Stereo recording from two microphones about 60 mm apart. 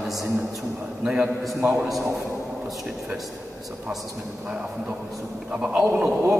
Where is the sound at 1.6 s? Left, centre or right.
Centre.